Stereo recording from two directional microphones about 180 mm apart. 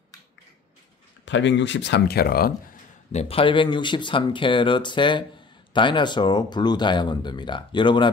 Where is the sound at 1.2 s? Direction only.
85° left; by 2.8 s 55° left (ahead or behind).